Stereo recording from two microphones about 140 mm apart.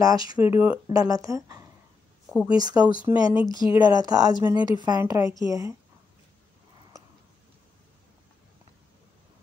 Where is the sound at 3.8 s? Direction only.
30° right (ahead or behind).